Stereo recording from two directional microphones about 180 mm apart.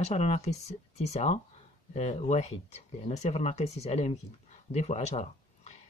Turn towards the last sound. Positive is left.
turn(degrees=40)  # may be behind; listen again after turning